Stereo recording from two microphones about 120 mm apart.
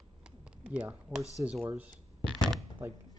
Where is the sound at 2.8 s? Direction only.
20° right (ahead or behind).